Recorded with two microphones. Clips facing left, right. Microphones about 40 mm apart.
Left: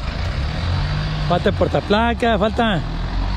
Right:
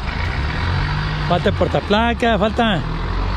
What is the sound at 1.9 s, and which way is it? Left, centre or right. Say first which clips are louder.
Speech: right 1 dB; right.